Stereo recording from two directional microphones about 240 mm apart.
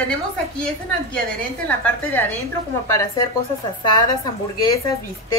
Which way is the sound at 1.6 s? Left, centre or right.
Centre.